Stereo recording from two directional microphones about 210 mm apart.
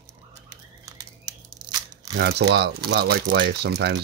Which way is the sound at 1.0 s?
15° right (ahead or behind).